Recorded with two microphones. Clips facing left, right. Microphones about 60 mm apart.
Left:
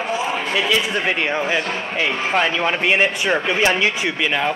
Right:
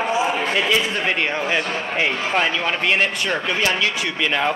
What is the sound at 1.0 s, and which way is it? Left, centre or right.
Speech, centre.